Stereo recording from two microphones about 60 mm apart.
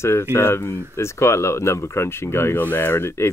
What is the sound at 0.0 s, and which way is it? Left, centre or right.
Speech, left.